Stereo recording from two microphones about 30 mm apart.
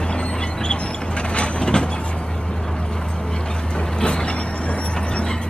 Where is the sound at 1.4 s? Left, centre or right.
Left.